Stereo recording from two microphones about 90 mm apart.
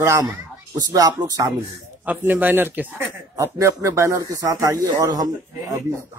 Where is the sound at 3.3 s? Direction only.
35° right (ahead or behind).